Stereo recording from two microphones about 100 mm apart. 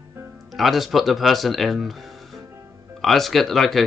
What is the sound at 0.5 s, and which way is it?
Speech, centre (ahead or behind).